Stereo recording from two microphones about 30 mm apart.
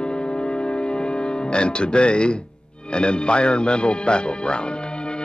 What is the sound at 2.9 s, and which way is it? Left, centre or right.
Music, left.